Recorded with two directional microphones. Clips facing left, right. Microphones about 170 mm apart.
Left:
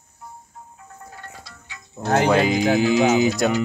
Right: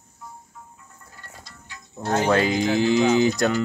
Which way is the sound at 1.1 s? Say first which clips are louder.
Left 5 dB; 70° left (ahead or behind).